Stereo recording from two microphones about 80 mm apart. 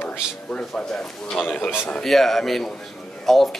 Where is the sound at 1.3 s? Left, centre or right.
Centre.